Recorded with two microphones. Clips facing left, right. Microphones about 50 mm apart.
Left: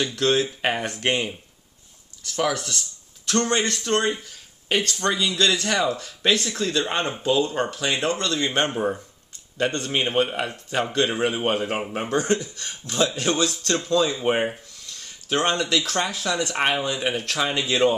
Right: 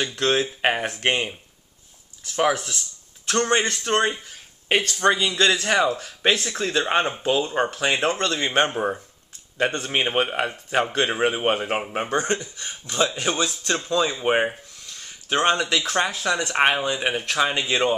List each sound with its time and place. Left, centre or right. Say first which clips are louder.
0.0 s speech: left 1 dB; right
4.3 s a sound: right 2 dB; right
5.0 s speech: right 4 dB; centre
12.3 s a man's voice: left 2 dB; centre